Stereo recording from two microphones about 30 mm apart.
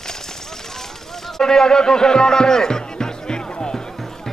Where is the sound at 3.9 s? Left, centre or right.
Centre.